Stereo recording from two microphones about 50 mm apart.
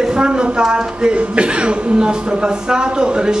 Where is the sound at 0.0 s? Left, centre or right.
Centre.